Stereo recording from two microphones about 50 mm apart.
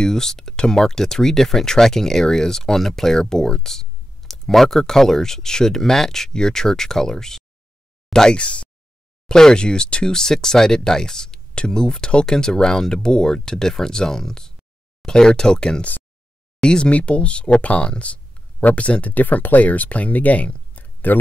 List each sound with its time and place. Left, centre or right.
0.0 s speech: centre
8.4 s speech: left